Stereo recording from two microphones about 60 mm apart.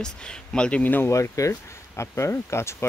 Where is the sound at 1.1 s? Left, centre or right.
Left.